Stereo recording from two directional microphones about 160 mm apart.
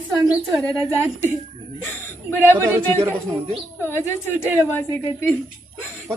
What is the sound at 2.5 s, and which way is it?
Speech, 15° right (ahead or behind).